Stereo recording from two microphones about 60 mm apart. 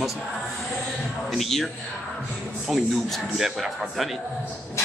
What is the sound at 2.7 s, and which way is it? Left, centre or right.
A man's voice, centre.